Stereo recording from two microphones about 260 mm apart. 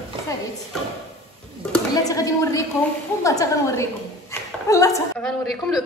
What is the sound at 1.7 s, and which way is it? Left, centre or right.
A woman's voice, centre.